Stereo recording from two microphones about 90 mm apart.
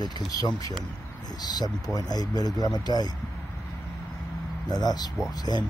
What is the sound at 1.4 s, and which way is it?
Speech, 50° left (ahead or behind).